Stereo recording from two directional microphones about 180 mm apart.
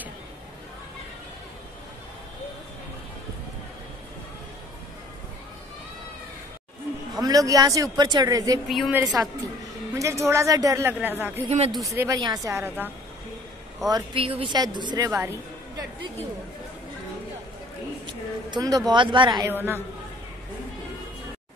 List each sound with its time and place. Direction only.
7.2 s speech: 20° right (ahead or behind)
8.6 s a woman's voice: centre (ahead or behind)
8.9 s speech: 20° right (ahead or behind)
11.4 s speech: 35° right (ahead or behind)
11.8 s speech: 15° right (ahead or behind)
13.8 s speech: 25° right (ahead or behind)
18.5 s speech: 20° right (ahead or behind)
19.5 s speech: 10° right (ahead or behind)